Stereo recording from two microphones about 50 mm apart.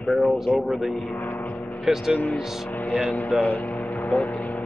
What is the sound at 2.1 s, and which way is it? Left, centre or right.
Speech, left.